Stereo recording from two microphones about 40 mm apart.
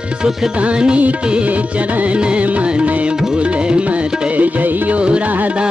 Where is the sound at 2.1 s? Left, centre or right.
Right.